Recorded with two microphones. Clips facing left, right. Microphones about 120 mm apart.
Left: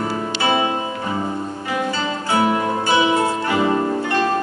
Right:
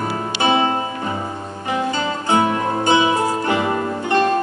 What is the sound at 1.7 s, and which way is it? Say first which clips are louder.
Music: right 3 dB; 25° right (ahead or behind).